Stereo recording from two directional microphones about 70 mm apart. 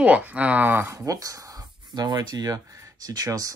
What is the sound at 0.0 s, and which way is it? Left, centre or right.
Speech, right.